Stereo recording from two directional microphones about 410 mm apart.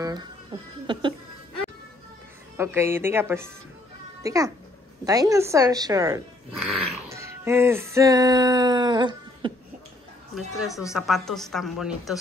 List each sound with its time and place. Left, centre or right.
0.0 s speech: centre
2.5 s a woman's voice: centre
5.0 s a sound: centre
10.3 s a woman's voice: centre